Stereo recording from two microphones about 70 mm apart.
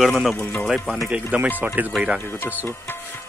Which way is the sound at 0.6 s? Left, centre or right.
Centre.